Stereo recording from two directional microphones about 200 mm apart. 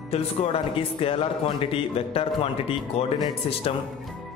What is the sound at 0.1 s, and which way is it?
Speech, 30° left (ahead or behind).